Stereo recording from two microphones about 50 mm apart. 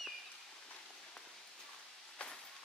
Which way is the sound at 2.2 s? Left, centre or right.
Left.